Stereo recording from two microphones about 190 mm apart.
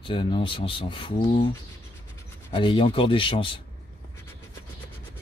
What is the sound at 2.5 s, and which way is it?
Speech, 25° left (ahead or behind).